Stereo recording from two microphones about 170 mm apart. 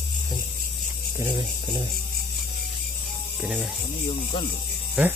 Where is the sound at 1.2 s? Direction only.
20° right (ahead or behind).